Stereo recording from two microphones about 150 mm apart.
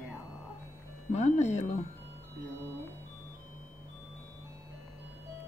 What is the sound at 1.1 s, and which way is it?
Music, 50° left (ahead or behind).